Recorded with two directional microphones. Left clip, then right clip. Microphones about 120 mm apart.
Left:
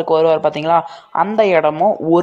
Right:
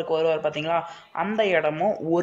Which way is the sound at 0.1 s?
50° left (ahead or behind).